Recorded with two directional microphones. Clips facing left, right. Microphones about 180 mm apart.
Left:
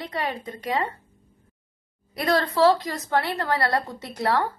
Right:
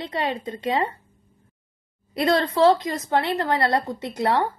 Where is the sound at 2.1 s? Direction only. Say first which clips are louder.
Right 2 dB; 25° right (ahead or behind).